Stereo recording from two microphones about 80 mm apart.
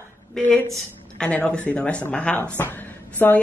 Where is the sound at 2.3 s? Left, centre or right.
Left.